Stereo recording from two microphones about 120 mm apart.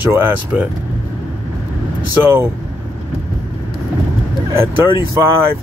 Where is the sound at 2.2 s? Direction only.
20° right (ahead or behind).